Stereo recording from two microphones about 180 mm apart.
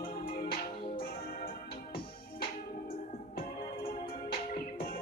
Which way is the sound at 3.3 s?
55° left (ahead or behind).